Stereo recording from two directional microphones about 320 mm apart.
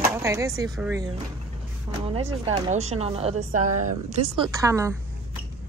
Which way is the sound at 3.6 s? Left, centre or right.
Right.